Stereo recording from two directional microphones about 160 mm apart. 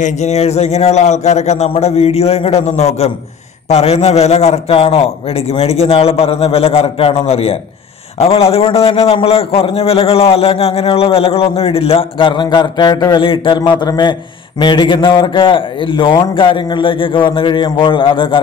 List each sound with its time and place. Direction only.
0.0 s a man's voice: 45° left (ahead or behind)